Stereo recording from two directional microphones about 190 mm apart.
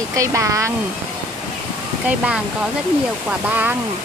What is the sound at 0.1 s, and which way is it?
Speech, 15° right (ahead or behind).